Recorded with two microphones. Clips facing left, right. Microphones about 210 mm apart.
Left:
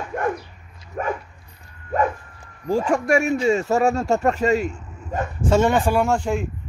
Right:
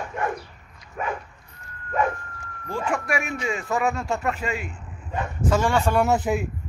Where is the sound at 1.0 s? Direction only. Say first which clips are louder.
Left 4 dB; 45° left (ahead or behind).